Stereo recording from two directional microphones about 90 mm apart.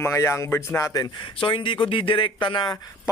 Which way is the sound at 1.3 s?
70° left (ahead or behind).